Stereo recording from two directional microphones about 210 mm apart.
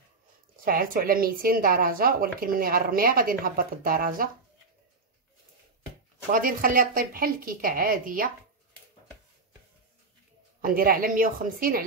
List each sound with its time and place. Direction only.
0.7 s a woman's voice: 40° right (ahead or behind)
6.3 s a woman's voice: 40° right (ahead or behind)
10.6 s a woman's voice: 45° right (ahead or behind)